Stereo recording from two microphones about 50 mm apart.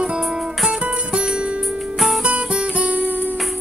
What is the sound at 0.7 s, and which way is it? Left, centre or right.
Music, right.